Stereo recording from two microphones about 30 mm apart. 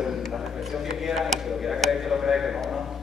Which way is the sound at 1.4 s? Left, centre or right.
Centre.